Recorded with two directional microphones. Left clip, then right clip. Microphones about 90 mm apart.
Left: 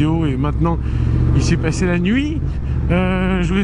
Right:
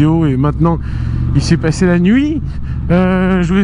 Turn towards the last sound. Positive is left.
turn(degrees=-35)  # may be behind; listen again after turning